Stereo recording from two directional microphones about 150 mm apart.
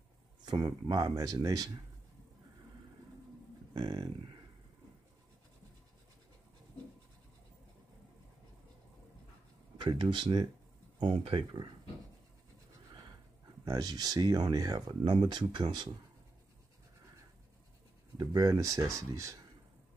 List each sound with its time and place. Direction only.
0.5 s speech: 25° right (ahead or behind)
3.7 s speech: 30° right (ahead or behind)
9.8 s speech: 30° right (ahead or behind)
13.7 s speech: 25° right (ahead or behind)
18.1 s speech: 25° right (ahead or behind)